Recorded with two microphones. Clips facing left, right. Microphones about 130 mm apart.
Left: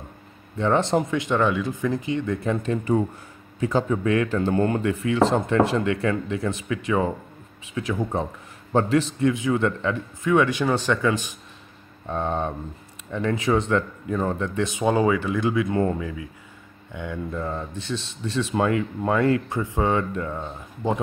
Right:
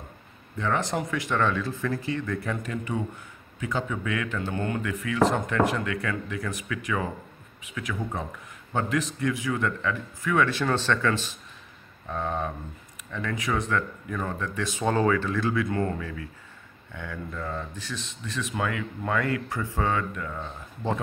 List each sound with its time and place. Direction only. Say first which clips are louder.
0.6 s speech: left 6 dB; 25° left (ahead or behind)
12.1 s speech: left 4 dB; 30° left (ahead or behind)